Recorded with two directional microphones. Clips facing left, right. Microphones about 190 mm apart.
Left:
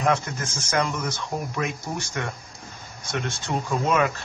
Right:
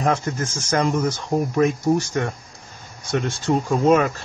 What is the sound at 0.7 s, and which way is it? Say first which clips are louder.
A man's voice: right 5 dB; 40° right (ahead or behind).